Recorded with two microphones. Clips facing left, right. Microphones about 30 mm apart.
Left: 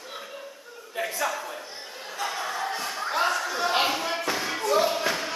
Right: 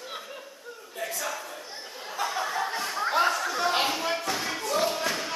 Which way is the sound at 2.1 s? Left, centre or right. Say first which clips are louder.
Right 1 dB; centre.